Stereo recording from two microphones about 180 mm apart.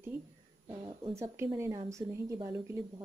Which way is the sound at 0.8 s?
30° right (ahead or behind).